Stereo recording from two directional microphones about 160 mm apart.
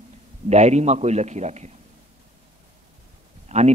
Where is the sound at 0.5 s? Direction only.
45° right (ahead or behind).